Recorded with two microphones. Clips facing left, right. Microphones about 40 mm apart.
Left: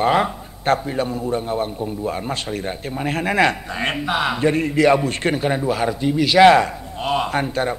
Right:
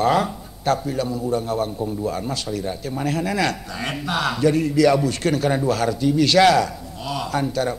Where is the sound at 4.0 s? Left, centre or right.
Left.